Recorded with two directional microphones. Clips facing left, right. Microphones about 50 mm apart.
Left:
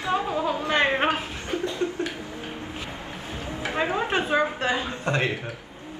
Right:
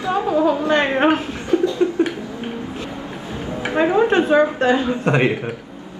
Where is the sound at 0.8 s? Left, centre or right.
Right.